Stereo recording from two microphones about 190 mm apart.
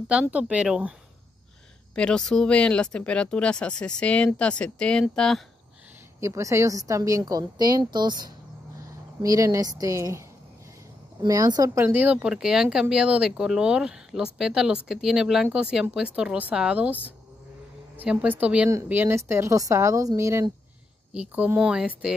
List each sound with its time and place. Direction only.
0.1 s speech: 5° right (ahead or behind)
2.0 s speech: 5° left (ahead or behind)
6.2 s a woman's voice: 15° right (ahead or behind)
11.2 s speech: 20° right (ahead or behind)
17.9 s speech: 5° right (ahead or behind)